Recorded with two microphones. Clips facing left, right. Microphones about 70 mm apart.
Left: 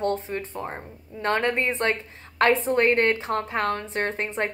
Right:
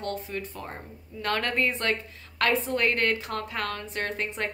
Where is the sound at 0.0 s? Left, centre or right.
Left.